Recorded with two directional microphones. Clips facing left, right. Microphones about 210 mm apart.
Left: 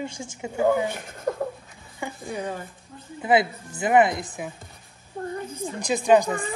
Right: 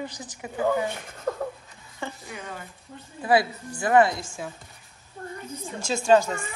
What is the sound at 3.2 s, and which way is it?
Speech, 20° left (ahead or behind).